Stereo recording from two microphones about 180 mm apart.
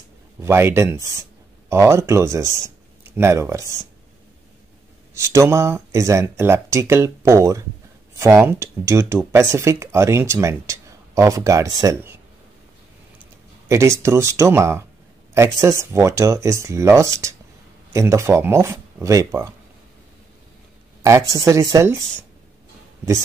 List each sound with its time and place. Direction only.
0.4 s speech: 15° right (ahead or behind)
5.1 s speech: 15° right (ahead or behind)
13.7 s speech: 15° right (ahead or behind)
21.0 s speech: 15° right (ahead or behind)